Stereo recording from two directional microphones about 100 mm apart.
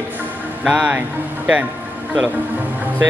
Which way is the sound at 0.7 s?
15° right (ahead or behind).